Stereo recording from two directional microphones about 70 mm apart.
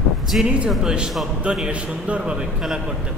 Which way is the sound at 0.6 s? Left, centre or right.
Centre.